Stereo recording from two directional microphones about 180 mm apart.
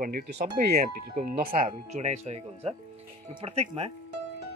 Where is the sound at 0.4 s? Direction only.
50° right (ahead or behind).